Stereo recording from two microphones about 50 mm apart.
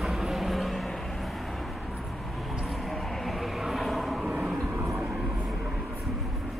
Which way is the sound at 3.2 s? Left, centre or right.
Centre.